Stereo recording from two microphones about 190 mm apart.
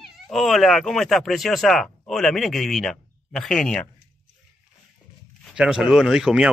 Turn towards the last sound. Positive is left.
turn(degrees=-5)  # may be behind; listen again after turning